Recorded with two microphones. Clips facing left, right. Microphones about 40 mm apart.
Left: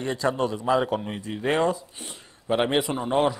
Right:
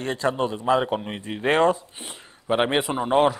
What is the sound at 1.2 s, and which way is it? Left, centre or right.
Speech, right.